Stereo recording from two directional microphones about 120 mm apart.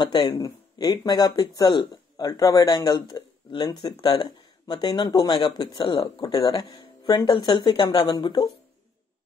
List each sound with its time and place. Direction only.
0.0 s speech: 35° left (ahead or behind)